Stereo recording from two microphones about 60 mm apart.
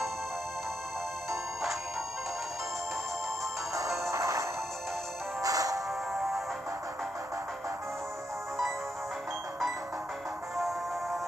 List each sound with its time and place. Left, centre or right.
1.3 s music: centre
4.1 s music: right
5.4 s music: right
6.1 s music: centre